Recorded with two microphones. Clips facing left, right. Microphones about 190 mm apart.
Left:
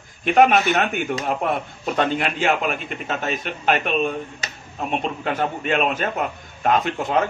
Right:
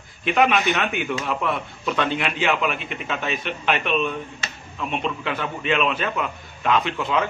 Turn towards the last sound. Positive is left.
turn(degrees=45)  # may be behind; listen again after turning